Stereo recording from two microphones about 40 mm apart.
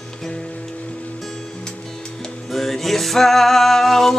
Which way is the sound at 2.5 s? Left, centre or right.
Centre.